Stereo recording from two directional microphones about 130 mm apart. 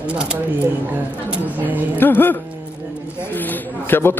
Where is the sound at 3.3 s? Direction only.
15° left (ahead or behind).